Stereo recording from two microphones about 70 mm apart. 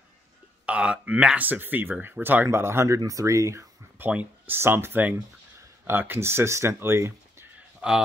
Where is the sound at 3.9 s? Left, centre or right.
Right.